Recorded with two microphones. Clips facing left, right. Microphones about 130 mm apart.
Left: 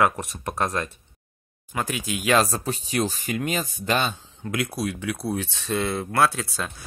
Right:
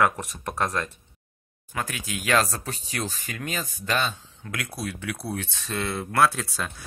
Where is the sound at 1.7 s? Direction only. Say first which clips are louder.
Left 4 dB; 20° left (ahead or behind).